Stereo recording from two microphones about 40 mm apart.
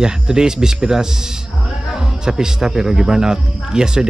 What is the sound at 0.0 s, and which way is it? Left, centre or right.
Speech, centre.